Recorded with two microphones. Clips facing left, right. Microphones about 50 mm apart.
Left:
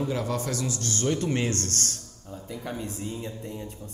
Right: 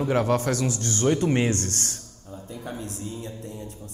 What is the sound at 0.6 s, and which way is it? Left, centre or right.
Speech, right.